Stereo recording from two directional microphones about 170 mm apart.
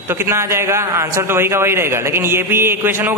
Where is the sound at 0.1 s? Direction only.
15° right (ahead or behind).